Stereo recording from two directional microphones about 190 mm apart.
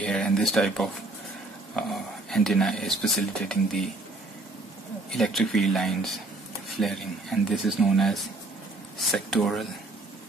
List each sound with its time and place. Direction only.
0.0 s speech: 5° left (ahead or behind)
5.1 s speech: centre (ahead or behind)